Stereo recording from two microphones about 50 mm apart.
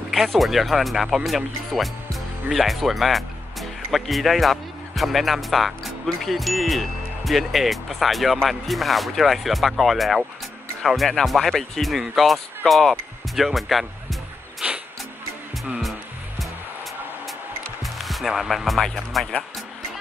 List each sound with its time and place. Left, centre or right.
0.4 s speech: centre
14.6 s music: centre
17.8 s speech: centre